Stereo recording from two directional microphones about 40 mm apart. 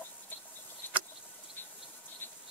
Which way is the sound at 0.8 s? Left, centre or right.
Left.